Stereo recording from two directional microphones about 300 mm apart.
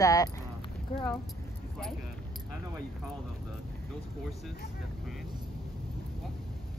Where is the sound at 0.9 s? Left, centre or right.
Left.